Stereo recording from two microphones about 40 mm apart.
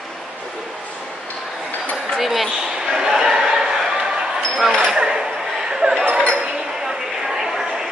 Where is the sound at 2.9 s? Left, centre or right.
Centre.